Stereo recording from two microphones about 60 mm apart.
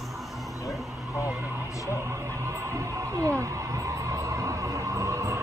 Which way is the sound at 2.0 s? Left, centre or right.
Right.